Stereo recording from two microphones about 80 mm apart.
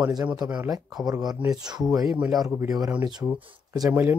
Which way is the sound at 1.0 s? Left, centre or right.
Right.